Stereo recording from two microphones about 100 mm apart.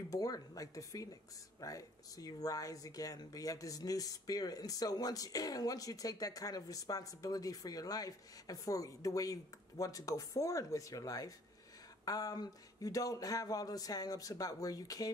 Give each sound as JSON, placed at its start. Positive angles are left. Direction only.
{"t": 0.1, "sound": "speech", "side_deg": 35}